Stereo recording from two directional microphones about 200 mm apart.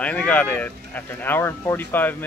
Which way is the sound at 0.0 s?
5° left (ahead or behind).